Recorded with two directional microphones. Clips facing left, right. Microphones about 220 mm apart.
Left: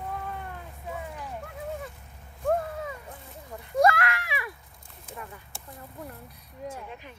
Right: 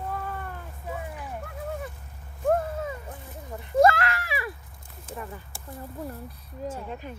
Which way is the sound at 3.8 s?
30° right (ahead or behind).